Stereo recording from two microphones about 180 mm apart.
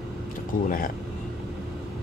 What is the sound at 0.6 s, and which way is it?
Speech, 50° left (ahead or behind).